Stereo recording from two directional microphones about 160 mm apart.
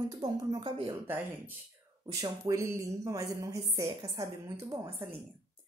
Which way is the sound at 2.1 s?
20° right (ahead or behind).